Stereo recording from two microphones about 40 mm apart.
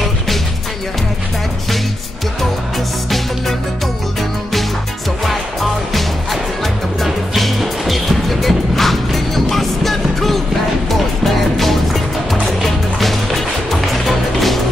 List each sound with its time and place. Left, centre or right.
5.2 s music: centre
7.3 s music: centre
11.5 s music: centre